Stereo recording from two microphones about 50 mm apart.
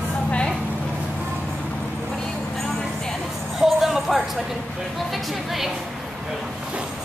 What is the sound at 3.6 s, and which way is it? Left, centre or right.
Speech, centre.